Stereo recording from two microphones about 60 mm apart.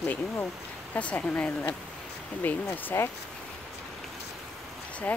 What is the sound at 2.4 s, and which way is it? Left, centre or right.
Speech, left.